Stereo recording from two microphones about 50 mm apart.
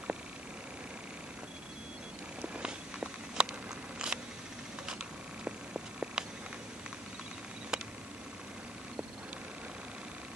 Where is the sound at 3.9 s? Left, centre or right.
Centre.